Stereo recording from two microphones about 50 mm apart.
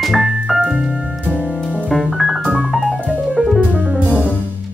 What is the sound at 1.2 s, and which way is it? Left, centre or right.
Music, right.